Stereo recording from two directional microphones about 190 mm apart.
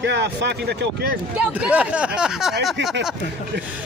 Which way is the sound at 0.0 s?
65° right (ahead or behind).